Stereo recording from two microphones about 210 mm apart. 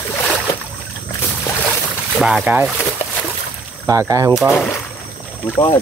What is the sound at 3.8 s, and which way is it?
Speech, 15° right (ahead or behind).